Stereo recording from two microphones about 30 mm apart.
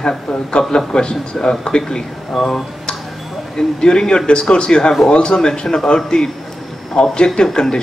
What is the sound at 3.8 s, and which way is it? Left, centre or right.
A man's voice, centre.